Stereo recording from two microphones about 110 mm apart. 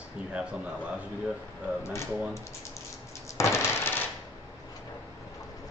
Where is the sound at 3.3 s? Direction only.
25° left (ahead or behind).